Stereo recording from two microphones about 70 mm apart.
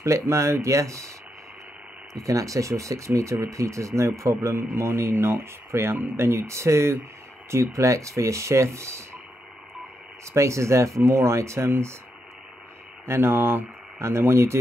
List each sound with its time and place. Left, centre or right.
0.0 s speech: right
2.1 s speech: right
10.3 s speech: right
13.0 s speech: right